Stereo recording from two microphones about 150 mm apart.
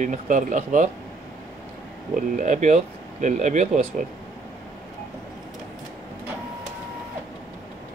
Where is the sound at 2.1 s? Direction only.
55° right (ahead or behind).